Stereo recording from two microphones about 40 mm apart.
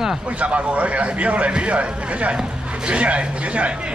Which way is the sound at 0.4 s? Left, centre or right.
Right.